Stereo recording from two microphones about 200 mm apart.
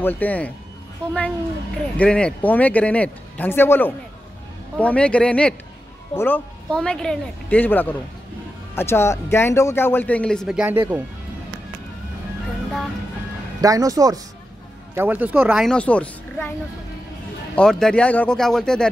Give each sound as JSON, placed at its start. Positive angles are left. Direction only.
{"t": 0.0, "sound": "speech", "side_deg": 10}
{"t": 13.6, "sound": "speech", "side_deg": -15}
{"t": 17.6, "sound": "speech", "side_deg": 5}